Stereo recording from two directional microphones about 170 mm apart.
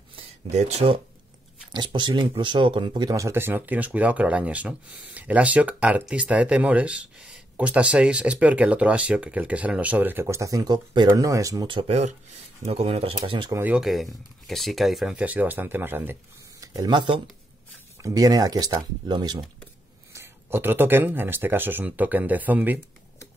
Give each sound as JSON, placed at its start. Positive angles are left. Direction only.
{"t": 0.1, "sound": "a sound", "side_deg": -40}
{"t": 1.7, "sound": "speech", "side_deg": -25}
{"t": 13.5, "sound": "speech", "side_deg": -10}
{"t": 20.1, "sound": "speech", "side_deg": -15}